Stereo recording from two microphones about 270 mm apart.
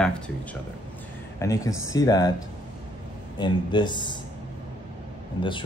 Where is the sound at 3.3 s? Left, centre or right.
Centre.